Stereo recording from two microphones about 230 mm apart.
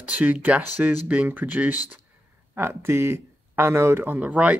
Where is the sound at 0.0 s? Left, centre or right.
Centre.